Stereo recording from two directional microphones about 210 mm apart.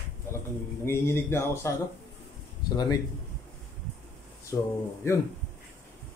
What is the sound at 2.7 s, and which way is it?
Speech, 15° left (ahead or behind).